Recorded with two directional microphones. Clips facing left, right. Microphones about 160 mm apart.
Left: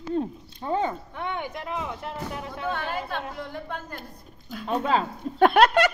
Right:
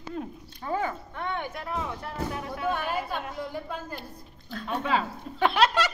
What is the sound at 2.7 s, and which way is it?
Speech, 10° right (ahead or behind).